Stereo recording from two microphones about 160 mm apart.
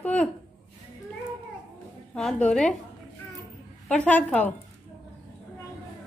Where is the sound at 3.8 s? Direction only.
10° left (ahead or behind).